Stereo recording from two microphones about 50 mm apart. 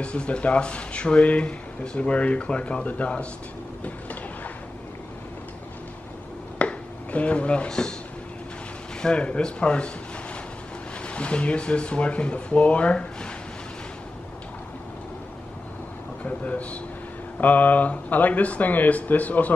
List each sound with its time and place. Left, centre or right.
0.0 s speech: left
6.6 s a sound: left
9.0 s speech: left
11.1 s speech: left
16.3 s a man's voice: left